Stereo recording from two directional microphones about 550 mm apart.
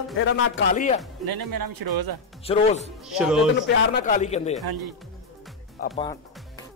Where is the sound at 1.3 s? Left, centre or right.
Right.